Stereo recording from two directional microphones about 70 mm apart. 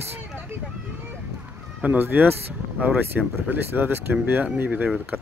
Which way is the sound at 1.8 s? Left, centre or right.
Right.